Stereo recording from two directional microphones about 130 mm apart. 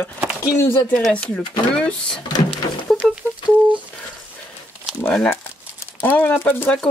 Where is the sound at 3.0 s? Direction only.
Centre (ahead or behind).